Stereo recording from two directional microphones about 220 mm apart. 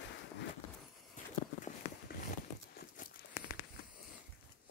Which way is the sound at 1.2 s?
35° left (ahead or behind).